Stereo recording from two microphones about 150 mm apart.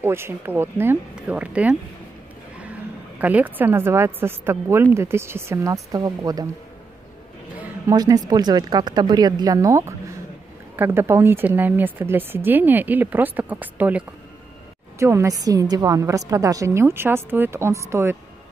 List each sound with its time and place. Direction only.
0.0 s a woman's voice: 15° right (ahead or behind)
7.5 s a sound: 10° right (ahead or behind)
7.9 s a woman's voice: 25° right (ahead or behind)